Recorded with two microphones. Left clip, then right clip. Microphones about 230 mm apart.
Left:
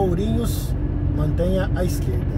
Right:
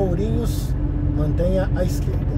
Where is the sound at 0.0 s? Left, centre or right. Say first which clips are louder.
Left 1 dB; left.